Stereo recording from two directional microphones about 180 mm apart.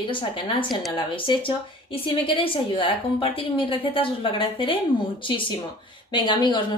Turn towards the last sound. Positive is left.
turn(degrees=25)  # may be behind; listen again after turning